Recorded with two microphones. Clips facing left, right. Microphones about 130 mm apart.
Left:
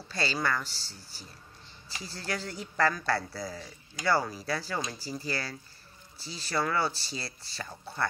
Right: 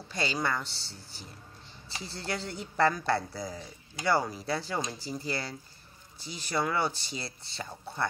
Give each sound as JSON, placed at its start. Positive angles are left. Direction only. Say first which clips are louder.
{"t": 0.1, "sound": "a woman's voice", "louder": "even", "side_deg": -20}